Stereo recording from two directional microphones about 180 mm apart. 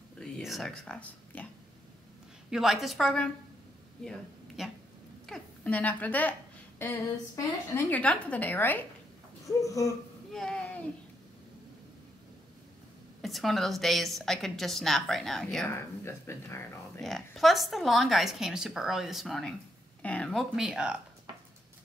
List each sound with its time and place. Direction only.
0.2 s speech: centre (ahead or behind)
2.5 s a woman's voice: 5° right (ahead or behind)
4.6 s a woman's voice: centre (ahead or behind); by 9.9 s 20° left (ahead or behind)
10.3 s a sound: 5° left (ahead or behind)
13.2 s a woman's voice: centre (ahead or behind)
15.6 s a woman's voice: 15° left (ahead or behind)
17.0 s a woman's voice: centre (ahead or behind)